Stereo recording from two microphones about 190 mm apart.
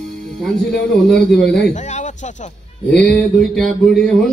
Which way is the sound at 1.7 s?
40° left (ahead or behind).